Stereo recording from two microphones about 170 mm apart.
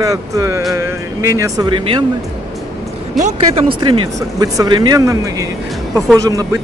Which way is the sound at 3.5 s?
30° right (ahead or behind).